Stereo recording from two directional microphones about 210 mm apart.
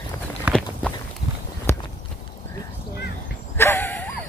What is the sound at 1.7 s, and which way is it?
Clip-clop, 10° left (ahead or behind).